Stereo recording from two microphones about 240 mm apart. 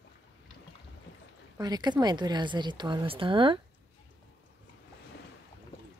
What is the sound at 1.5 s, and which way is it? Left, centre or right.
A woman's voice, centre.